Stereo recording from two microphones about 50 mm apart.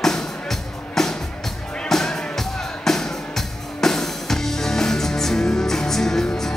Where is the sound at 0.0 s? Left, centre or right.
Centre.